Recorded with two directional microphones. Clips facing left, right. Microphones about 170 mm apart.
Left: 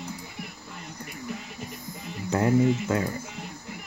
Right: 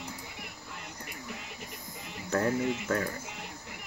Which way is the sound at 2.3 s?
20° left (ahead or behind).